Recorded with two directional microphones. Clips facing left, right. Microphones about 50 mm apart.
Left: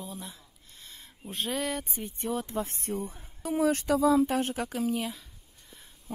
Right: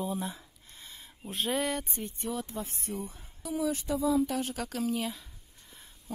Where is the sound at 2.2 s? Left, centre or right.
Left.